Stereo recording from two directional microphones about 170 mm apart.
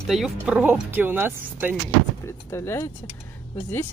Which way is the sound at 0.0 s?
Centre (ahead or behind).